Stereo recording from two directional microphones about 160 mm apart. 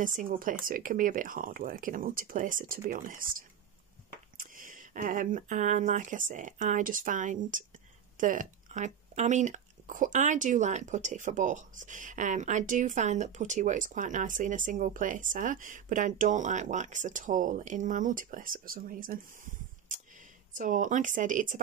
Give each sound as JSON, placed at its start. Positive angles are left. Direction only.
{"t": 0.0, "sound": "speech", "side_deg": -55}